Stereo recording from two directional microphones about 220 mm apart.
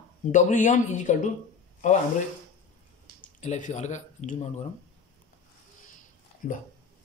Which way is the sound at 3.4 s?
30° left (ahead or behind).